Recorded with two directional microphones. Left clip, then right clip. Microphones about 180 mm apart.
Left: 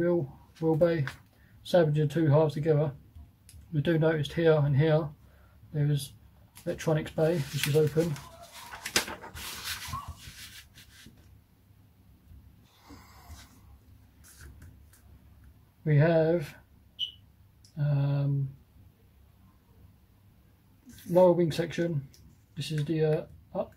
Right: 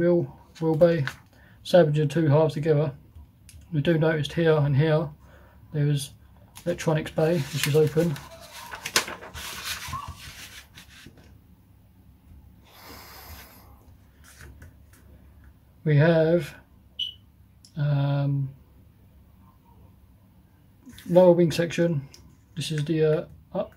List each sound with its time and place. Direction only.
0.0 s speech: 15° right (ahead or behind)
15.8 s speech: 15° right (ahead or behind)
17.7 s speech: 15° right (ahead or behind)
21.1 s speech: 20° right (ahead or behind)